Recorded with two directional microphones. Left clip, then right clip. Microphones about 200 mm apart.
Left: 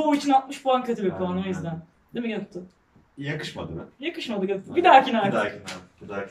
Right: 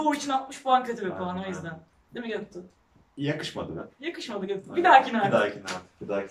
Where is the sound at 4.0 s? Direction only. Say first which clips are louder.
Left 6 dB; 5° left (ahead or behind).